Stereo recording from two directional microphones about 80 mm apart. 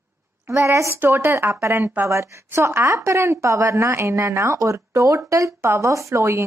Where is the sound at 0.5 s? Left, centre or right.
Right.